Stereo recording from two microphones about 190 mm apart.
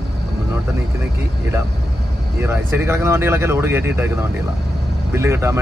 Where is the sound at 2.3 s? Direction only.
10° right (ahead or behind).